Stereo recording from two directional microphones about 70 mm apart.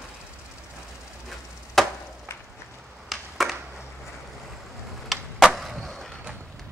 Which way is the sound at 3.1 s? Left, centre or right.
Centre.